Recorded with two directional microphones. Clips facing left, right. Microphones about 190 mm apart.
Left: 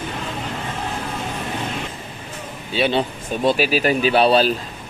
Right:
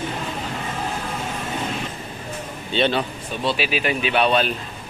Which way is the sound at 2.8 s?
5° left (ahead or behind).